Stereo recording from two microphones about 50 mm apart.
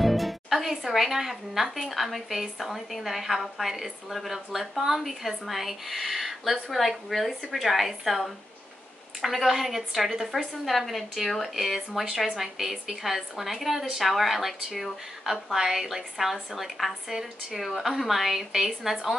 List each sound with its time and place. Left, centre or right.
0.0 s speech: centre